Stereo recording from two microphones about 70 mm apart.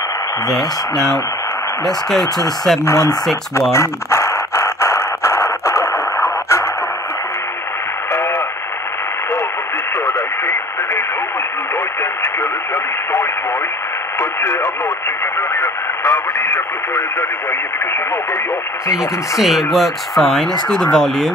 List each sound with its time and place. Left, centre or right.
0.5 s speech: centre
2.8 s speech: left
3.7 s a sound: left
8.1 s radio: left
9.9 s radio: left
14.4 s radio: left
18.9 s speech: centre